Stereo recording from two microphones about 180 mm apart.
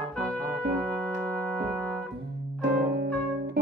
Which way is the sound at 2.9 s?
65° right (ahead or behind).